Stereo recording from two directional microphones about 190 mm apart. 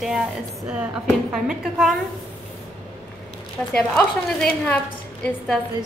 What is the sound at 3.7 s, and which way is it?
A woman's voice, 5° left (ahead or behind).